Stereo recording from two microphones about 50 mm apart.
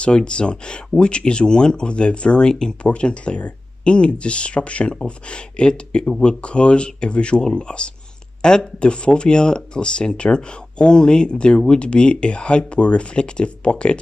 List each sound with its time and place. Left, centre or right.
0.0 s speech: left